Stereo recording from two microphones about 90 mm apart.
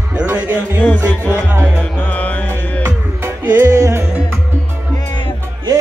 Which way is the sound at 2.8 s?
25° right (ahead or behind).